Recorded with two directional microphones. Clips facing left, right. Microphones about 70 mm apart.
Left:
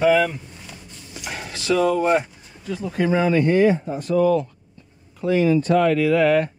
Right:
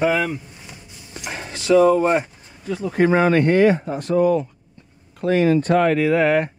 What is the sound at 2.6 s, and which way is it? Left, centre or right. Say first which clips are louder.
Speech: right 4 dB; right.